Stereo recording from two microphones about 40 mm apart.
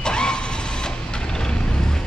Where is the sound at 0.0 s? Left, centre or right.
Left.